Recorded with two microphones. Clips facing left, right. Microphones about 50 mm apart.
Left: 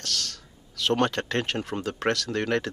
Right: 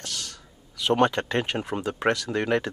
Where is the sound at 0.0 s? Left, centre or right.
Centre.